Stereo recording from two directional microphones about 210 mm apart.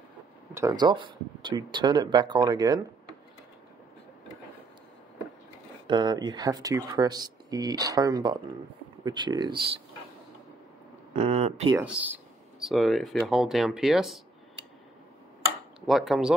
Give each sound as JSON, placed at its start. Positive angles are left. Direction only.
{"t": 0.6, "sound": "speech", "side_deg": -15}
{"t": 5.9, "sound": "speech", "side_deg": -20}
{"t": 11.1, "sound": "speech", "side_deg": -30}
{"t": 11.7, "sound": "speech", "side_deg": -5}
{"t": 15.9, "sound": "speech", "side_deg": 0}